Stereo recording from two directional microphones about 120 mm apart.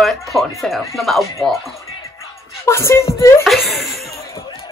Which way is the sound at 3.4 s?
Centre (ahead or behind).